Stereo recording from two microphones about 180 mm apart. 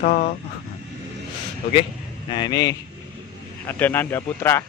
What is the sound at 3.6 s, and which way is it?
Speech, 10° left (ahead or behind).